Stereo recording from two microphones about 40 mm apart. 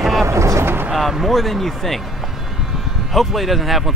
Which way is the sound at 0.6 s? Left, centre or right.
Right.